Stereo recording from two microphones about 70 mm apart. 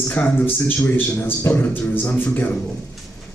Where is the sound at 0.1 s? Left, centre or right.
Left.